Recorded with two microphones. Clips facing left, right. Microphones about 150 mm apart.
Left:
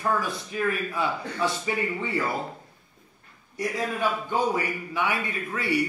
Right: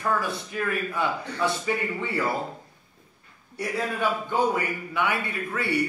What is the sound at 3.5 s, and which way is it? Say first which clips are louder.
Speech: even; 15° left (ahead or behind).